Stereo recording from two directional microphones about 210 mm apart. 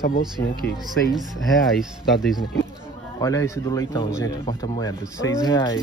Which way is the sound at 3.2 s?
15° left (ahead or behind).